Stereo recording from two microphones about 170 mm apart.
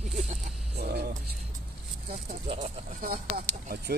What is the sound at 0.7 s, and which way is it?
Wild animals, 65° right (ahead or behind).